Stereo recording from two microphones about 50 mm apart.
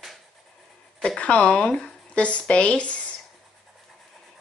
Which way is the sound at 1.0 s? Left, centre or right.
Left.